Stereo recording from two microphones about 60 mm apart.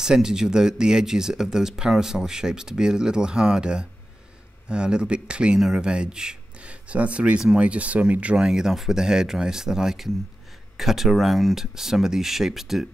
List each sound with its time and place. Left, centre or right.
0.0 s speech: centre